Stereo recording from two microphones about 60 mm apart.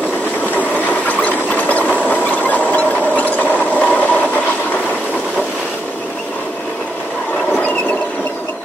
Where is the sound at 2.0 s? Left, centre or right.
Left.